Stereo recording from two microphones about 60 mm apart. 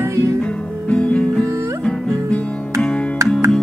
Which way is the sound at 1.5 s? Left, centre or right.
Right.